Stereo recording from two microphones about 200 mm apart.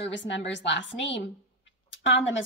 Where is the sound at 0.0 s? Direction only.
65° left (ahead or behind).